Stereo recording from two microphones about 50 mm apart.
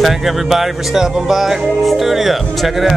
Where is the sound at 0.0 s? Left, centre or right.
Centre.